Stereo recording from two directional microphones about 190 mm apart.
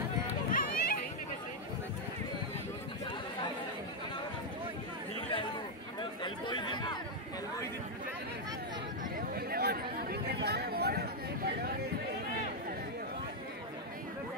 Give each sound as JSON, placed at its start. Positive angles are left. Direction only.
{"t": 0.5, "sound": "run", "side_deg": 50}
{"t": 5.9, "sound": "chatter", "side_deg": 25}
{"t": 9.3, "sound": "chatter", "side_deg": -55}